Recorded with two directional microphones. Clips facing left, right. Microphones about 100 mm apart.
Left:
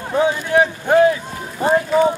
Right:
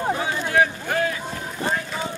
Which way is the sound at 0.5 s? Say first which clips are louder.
Left 5 dB; 20° left (ahead or behind).